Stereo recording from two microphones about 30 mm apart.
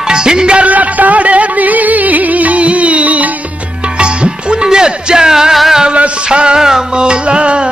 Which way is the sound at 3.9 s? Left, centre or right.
Right.